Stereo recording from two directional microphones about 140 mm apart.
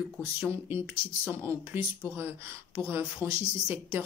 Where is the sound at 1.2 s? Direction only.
15° right (ahead or behind).